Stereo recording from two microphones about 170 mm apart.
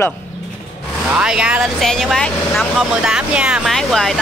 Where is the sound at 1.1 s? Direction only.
5° right (ahead or behind).